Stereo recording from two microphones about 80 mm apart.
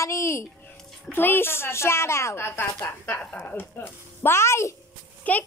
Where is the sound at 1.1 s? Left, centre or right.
Left.